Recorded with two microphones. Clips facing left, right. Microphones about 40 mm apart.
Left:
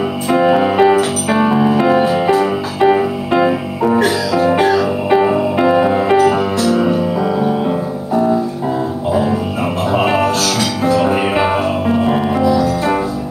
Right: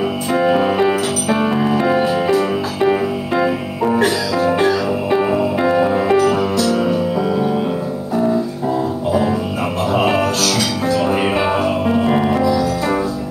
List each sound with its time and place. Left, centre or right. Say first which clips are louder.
0.3 s music: left 3 dB; centre
9.8 s music: left 2 dB; centre
11.9 s music: left 1 dB; centre